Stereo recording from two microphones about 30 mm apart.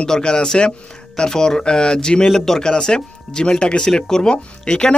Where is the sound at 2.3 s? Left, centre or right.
Centre.